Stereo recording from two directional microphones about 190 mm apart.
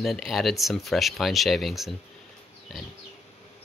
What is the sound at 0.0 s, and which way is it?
Speech, centre (ahead or behind).